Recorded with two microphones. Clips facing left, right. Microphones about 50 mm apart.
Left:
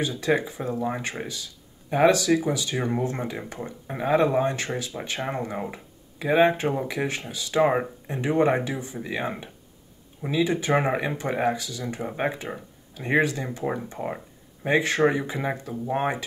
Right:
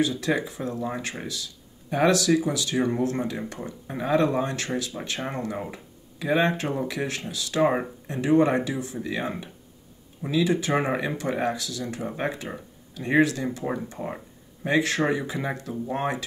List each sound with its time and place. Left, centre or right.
0.2 s speech: centre
13.8 s a sound: centre
14.7 s speech: centre